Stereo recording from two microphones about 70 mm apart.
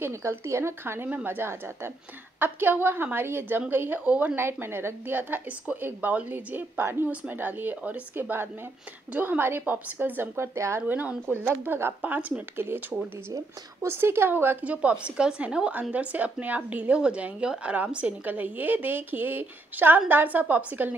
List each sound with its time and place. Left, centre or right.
0.0 s speech: right
1.0 s speech: right
4.0 s a woman's voice: centre
4.4 s speech: right
10.3 s speech: right
10.9 s speech: right
12.5 s speech: right
13.8 s speech: right